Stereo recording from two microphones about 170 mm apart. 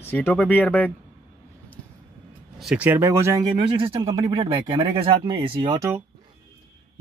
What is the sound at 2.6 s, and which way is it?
Speech, 10° right (ahead or behind).